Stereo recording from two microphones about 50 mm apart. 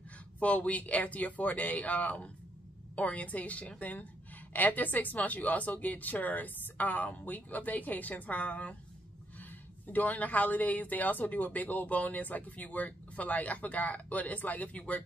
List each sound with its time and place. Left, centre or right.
0.4 s a woman's voice: left